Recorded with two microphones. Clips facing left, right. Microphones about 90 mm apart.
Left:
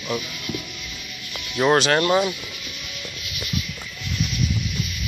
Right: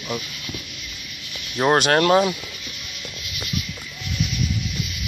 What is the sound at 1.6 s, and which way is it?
Speech, 40° right (ahead or behind).